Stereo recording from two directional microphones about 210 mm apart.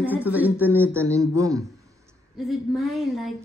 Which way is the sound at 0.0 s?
10° right (ahead or behind).